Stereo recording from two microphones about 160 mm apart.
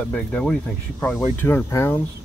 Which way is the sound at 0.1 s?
5° left (ahead or behind).